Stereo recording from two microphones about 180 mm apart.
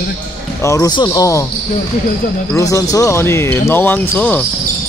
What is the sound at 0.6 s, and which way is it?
Speech, 15° left (ahead or behind).